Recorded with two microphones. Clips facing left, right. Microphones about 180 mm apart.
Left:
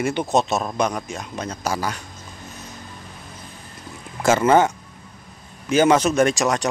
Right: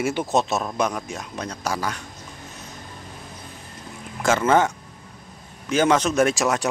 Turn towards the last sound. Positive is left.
turn(degrees=-5)  # may be behind; listen again after turning